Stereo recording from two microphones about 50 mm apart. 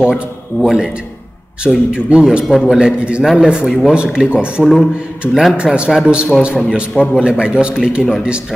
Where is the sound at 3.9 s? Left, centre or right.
Right.